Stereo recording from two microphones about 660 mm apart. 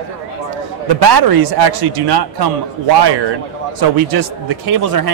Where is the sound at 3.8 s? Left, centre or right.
Right.